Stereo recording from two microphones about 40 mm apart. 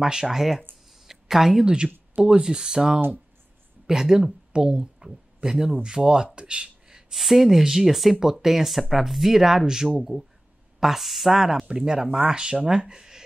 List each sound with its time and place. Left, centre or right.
0.0 s speech: centre
1.0 s a sound: centre
2.1 s speech: centre
6.2 s a sound: right
7.2 s speech: centre
11.6 s speech: centre